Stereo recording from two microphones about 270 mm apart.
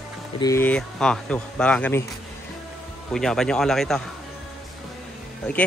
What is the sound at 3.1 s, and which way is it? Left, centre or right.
Speech, centre.